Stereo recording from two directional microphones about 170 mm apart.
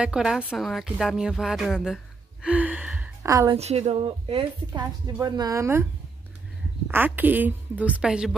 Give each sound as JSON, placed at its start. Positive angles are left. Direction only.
{"t": 0.0, "sound": "speech", "side_deg": -5}
{"t": 2.4, "sound": "gasp", "side_deg": -10}
{"t": 3.3, "sound": "speech", "side_deg": -20}
{"t": 3.5, "sound": "a woman's voice", "side_deg": -40}
{"t": 6.9, "sound": "a woman's voice", "side_deg": -10}